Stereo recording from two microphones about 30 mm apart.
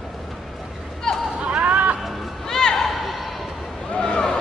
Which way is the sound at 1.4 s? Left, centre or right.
Right.